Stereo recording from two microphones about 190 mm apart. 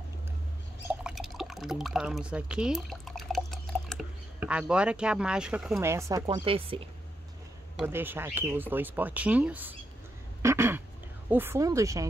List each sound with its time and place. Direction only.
1.0 s drip: centre (ahead or behind)
5.8 s speech: 15° right (ahead or behind)
6.4 s a woman's voice: 30° right (ahead or behind)
7.7 s speech: 10° right (ahead or behind)
10.4 s a sound: 15° right (ahead or behind)
11.2 s speech: 10° right (ahead or behind)